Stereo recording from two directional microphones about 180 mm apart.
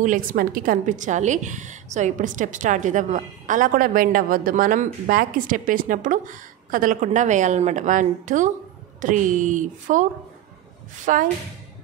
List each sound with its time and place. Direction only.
0.0 s a woman's voice: 50° right (ahead or behind)
11.1 s a woman's voice: 45° right (ahead or behind)